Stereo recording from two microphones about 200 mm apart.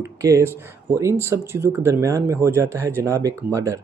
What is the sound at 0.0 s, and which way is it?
Speech, 15° right (ahead or behind).